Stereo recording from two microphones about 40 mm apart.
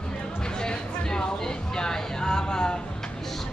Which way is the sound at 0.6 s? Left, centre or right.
Centre.